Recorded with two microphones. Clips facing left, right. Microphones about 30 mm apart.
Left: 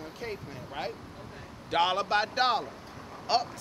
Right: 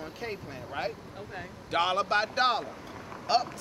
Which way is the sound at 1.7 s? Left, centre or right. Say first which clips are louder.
Even; centre.